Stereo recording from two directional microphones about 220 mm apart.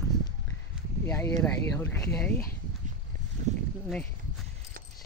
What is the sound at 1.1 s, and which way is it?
Speech, 10° left (ahead or behind).